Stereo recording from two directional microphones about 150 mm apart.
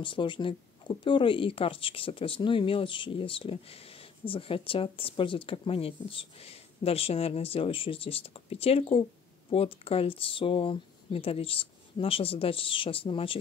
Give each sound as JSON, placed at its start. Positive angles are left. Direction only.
{"t": 0.0, "sound": "speech", "side_deg": 35}